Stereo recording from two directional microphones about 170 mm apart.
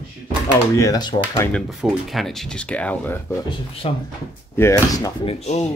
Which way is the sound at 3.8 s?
35° left (ahead or behind).